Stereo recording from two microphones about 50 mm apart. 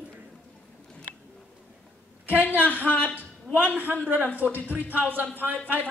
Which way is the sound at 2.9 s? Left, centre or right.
Right.